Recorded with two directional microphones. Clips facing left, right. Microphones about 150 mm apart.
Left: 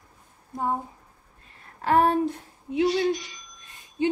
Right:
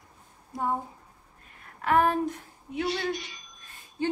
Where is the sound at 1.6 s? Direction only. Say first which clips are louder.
Left 2 dB; 30° left (ahead or behind).